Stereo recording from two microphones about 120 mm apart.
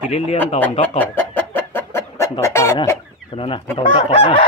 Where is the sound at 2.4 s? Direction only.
20° left (ahead or behind).